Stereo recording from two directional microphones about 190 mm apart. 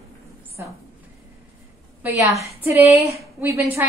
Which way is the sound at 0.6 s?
10° right (ahead or behind).